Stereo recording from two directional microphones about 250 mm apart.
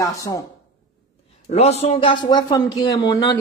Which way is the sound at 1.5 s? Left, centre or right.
Left.